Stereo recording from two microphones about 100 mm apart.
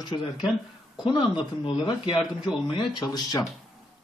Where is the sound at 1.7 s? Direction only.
55° left (ahead or behind).